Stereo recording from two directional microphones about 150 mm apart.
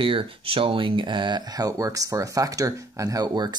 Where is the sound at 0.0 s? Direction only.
35° right (ahead or behind).